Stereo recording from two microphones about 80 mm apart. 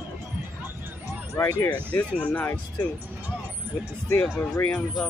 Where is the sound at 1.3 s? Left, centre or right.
Left.